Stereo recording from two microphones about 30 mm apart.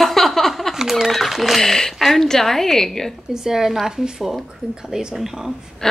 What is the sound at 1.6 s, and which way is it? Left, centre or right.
A woman's voice, centre.